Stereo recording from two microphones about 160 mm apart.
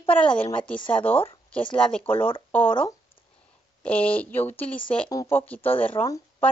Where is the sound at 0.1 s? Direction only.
10° left (ahead or behind).